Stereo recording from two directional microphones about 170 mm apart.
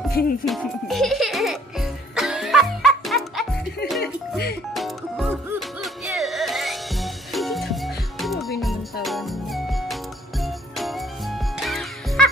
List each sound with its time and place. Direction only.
0.2 s speech: 65° left (ahead or behind)
0.5 s music: centre (ahead or behind)
4.0 s music: 65° left (ahead or behind)
4.7 s music: centre (ahead or behind)